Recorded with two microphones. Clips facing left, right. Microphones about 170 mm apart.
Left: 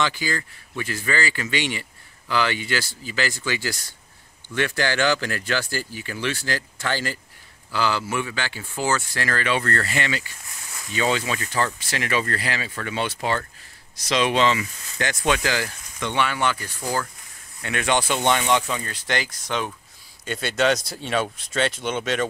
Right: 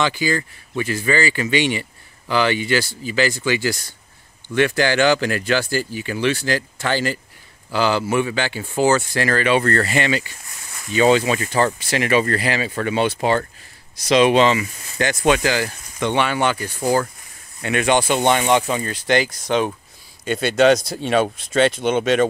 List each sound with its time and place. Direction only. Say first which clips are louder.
0.0 s speech: right 5 dB; 15° right (ahead or behind)
16.0 s speech: right 5 dB; 25° right (ahead or behind)
16.8 s speech: right 8 dB; 30° right (ahead or behind)
17.6 s speech: right 5 dB; 10° right (ahead or behind)
18.2 s speech: right 4 dB; 40° right (ahead or behind)
18.8 s speech: right 8 dB; 20° right (ahead or behind)